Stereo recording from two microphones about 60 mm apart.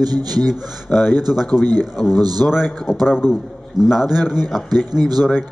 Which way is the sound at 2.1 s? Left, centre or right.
Right.